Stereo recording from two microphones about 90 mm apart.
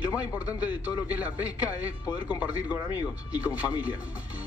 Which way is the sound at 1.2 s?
15° right (ahead or behind).